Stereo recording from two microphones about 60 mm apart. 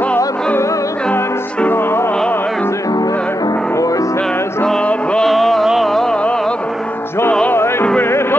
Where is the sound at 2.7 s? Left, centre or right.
Left.